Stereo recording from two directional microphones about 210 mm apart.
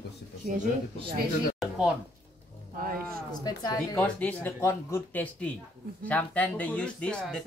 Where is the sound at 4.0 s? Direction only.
5° left (ahead or behind).